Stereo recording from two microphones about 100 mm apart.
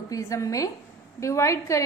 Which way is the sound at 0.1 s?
30° left (ahead or behind).